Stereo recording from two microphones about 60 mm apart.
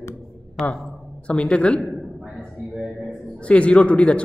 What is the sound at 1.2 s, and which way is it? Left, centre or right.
Speech, centre.